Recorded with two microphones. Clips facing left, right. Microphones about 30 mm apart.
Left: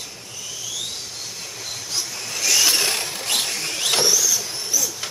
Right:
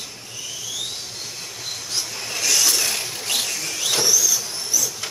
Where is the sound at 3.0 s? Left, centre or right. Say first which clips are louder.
Left 1 dB; left.